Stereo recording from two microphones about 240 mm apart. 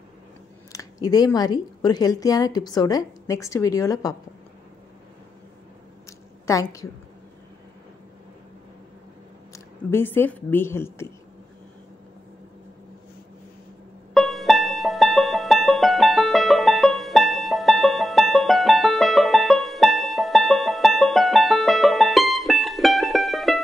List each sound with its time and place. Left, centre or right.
1.0 s a woman's voice: centre
6.4 s a woman's voice: centre
9.5 s a woman's voice: centre
14.1 s music: centre